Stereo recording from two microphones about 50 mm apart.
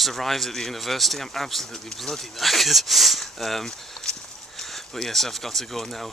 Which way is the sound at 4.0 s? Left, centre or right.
Centre.